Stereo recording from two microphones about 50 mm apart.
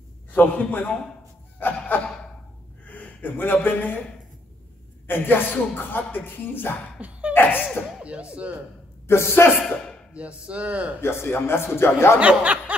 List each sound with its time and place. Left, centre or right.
0.3 s a man's voice: left
1.6 s a sound: left
2.9 s a man's voice: left
5.0 s speech: left
7.0 s a sound: right
7.3 s speech: left
8.0 s speech: right
9.0 s speech: left
9.6 s speech: left
10.1 s speech: right
11.0 s speech: left
12.2 s speech: right